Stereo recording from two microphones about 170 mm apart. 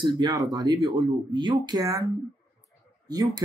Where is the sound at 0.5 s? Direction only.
20° right (ahead or behind).